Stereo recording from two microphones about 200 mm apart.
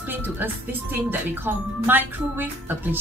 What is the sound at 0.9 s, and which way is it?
A woman's voice, 10° right (ahead or behind).